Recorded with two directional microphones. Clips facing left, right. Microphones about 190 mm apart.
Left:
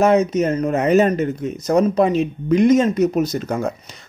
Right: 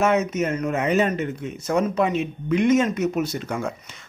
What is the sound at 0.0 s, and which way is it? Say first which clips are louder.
Speech: left 5 dB; 35° left (ahead or behind).